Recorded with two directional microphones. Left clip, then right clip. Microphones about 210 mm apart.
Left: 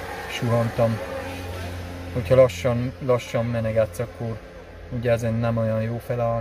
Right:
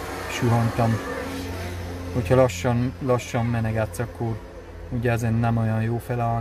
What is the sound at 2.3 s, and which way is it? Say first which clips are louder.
Speech: left 3 dB; 10° right (ahead or behind).